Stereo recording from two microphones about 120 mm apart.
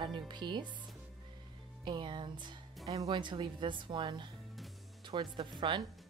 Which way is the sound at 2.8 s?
30° right (ahead or behind).